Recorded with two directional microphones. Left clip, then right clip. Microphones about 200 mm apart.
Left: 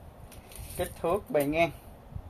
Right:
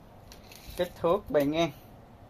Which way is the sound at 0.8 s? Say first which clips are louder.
Right 3 dB; 35° right (ahead or behind).